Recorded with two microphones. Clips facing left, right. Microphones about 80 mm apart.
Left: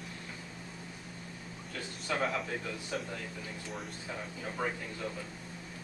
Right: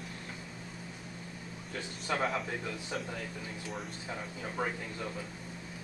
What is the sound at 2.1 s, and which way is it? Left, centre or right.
Speech, centre.